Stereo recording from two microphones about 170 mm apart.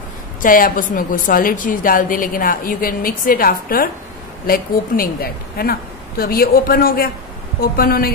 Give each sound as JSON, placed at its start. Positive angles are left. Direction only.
{"t": 0.4, "sound": "a woman's voice", "side_deg": 55}